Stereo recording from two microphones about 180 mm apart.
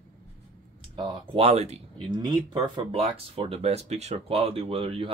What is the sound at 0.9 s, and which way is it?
Speech, 30° right (ahead or behind).